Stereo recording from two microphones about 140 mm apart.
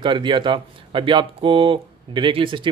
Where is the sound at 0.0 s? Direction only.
35° right (ahead or behind).